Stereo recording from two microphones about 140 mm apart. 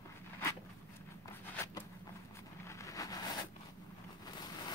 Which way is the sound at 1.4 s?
15° left (ahead or behind).